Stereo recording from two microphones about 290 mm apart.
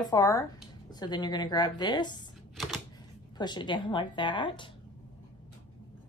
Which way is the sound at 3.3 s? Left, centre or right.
Centre.